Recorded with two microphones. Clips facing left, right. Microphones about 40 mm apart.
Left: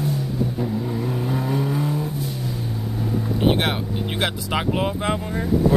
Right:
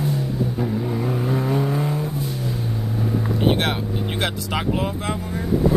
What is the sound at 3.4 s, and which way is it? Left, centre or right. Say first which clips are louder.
Speech: left 1 dB; centre.